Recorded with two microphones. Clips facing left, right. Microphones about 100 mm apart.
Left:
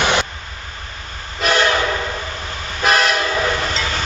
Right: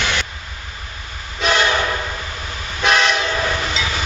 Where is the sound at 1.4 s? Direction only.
Centre (ahead or behind).